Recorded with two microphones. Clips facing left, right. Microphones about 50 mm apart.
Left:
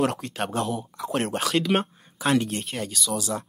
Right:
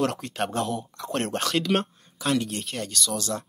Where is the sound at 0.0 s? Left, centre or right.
Centre.